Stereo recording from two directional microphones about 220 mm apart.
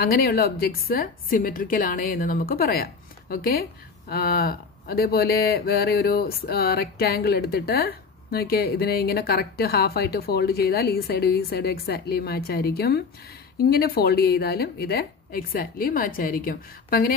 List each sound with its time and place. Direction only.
0.0 s speech: 45° left (ahead or behind)